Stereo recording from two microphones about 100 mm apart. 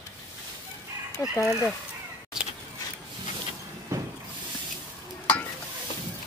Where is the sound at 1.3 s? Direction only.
25° left (ahead or behind).